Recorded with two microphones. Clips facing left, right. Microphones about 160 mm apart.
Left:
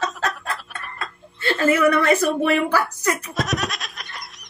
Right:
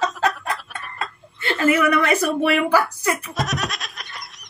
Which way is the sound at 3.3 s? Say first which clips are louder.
Left 1 dB; centre (ahead or behind).